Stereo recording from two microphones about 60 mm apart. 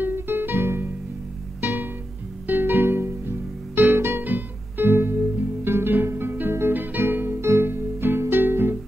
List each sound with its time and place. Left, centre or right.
0.0 s music: right
4.2 s music: right